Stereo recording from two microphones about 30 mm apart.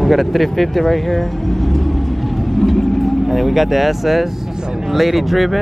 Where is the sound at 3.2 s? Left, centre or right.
Centre.